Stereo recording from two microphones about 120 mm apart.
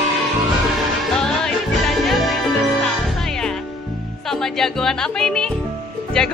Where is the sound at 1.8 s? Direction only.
Centre (ahead or behind).